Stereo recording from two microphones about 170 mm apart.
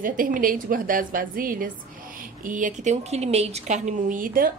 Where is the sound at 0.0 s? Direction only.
55° right (ahead or behind).